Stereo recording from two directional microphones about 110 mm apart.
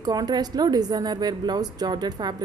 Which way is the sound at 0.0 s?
40° right (ahead or behind).